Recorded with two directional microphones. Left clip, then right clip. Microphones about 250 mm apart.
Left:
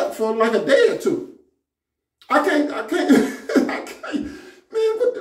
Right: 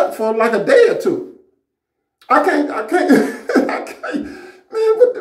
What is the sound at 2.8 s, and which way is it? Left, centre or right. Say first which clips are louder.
Cough: right 6 dB; centre.